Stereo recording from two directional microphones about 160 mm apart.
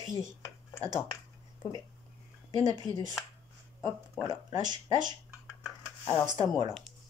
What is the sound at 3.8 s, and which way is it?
Speech, 10° left (ahead or behind).